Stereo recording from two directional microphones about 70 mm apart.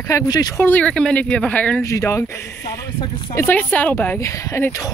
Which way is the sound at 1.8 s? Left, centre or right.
Left.